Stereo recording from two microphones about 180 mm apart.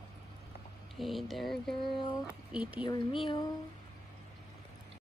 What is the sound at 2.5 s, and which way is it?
Speech, 5° right (ahead or behind).